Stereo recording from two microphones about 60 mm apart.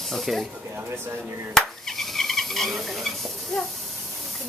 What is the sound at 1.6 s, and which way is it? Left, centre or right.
Speech, centre.